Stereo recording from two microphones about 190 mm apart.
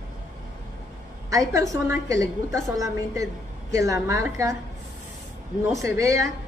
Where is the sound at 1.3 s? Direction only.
15° right (ahead or behind).